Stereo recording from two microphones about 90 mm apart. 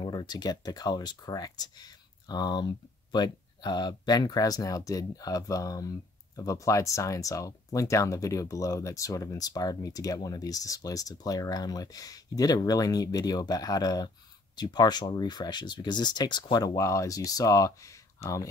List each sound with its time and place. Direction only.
0.0 s speech: 50° left (ahead or behind)
16.7 s speech: 35° left (ahead or behind)